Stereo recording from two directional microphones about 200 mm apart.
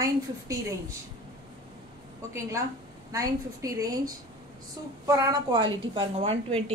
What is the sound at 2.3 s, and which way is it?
A woman's voice, 15° right (ahead or behind).